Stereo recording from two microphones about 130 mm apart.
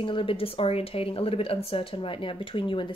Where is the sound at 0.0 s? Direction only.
40° left (ahead or behind).